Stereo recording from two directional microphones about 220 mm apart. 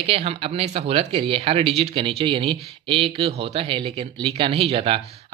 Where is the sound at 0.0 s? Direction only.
25° right (ahead or behind).